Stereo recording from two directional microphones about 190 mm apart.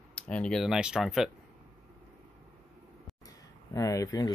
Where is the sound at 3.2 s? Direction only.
20° left (ahead or behind).